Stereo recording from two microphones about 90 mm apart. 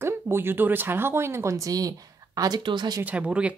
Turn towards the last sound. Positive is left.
turn(degrees=-15)  # may be behind; listen again after turning